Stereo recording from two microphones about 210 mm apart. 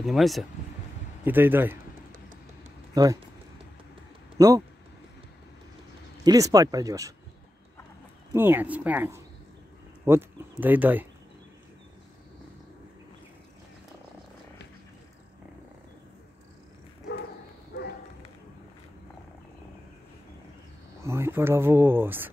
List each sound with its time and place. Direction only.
0.0 s speech: centre (ahead or behind)
2.9 s speech: 15° right (ahead or behind)
4.4 s speech: 15° right (ahead or behind)
6.2 s speech: 15° right (ahead or behind)
8.3 s speech: 10° right (ahead or behind)
21.0 s speech: 10° right (ahead or behind)